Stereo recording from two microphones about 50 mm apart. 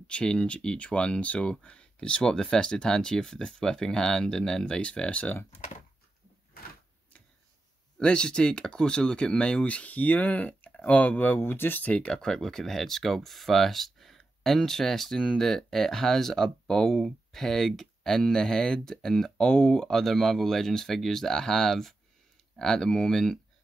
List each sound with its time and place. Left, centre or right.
0.0 s speech: centre
8.0 s speech: centre; by 11.3 s left
11.3 s speech: left
11.9 s speech: left
12.2 s speech: centre